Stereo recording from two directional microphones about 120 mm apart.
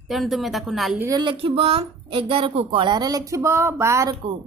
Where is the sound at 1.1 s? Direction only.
40° right (ahead or behind).